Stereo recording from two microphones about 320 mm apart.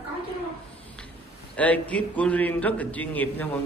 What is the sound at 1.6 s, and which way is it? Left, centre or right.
A man's voice, centre.